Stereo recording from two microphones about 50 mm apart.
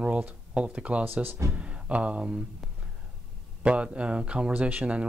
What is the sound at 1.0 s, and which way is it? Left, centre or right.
Speech, right.